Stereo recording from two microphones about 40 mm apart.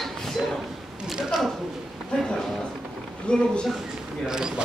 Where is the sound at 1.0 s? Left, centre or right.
Centre.